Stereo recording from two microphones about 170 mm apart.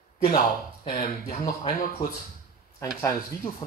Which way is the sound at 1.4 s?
25° left (ahead or behind).